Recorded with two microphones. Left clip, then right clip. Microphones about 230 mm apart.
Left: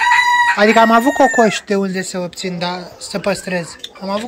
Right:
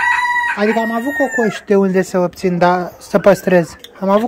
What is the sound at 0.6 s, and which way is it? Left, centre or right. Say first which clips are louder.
Speech: left 6 dB; centre.